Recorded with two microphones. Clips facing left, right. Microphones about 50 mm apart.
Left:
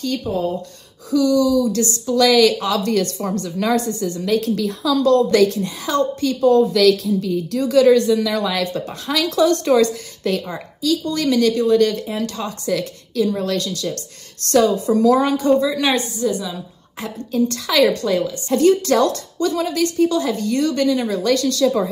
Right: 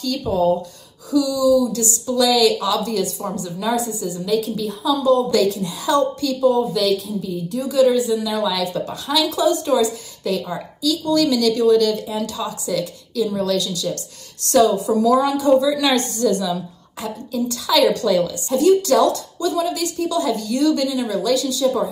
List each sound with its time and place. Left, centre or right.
0.3 s speech: centre
1.1 s speech: left
2.9 s a woman's voice: left
4.6 s a woman's voice: left
5.3 s speech: left
6.7 s a woman's voice: left
8.4 s speech: left
9.3 s a woman's voice: left
10.8 s speech: left
15.9 s a woman's voice: centre
17.0 s speech: left